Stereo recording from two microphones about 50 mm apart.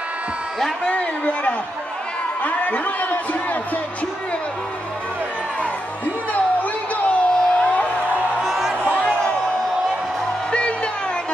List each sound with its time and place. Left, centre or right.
0.8 s a man's voice: left
7.1 s a sound: centre
8.4 s music: centre
8.9 s music: left
10.5 s music: left